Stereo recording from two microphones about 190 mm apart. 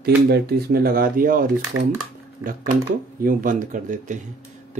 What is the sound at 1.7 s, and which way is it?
Speech, 90° right.